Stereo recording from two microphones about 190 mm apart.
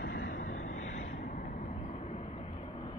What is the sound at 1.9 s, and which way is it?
Vehicle, 35° left (ahead or behind).